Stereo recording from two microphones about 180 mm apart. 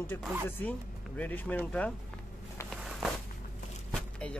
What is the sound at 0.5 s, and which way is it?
Speech, 10° left (ahead or behind).